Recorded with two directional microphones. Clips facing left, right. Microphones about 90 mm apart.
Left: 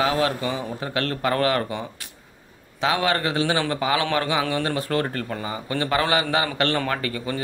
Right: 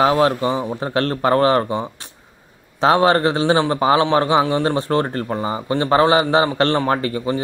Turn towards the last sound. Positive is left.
turn(degrees=-30)  # may be behind; listen again after turning